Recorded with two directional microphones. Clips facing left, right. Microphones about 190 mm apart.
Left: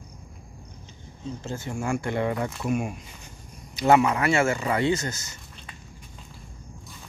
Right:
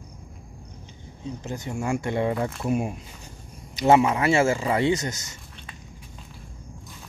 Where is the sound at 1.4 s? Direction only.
20° right (ahead or behind).